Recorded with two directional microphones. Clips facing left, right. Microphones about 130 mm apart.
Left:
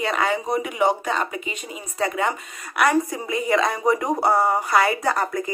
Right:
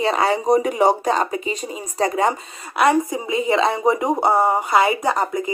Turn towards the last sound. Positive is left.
turn(degrees=-20)  # may be behind; listen again after turning